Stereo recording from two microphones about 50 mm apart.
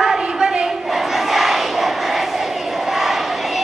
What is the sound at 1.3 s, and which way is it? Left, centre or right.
Crowd, centre.